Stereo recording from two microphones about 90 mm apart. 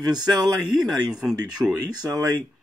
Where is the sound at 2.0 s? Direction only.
45° right (ahead or behind).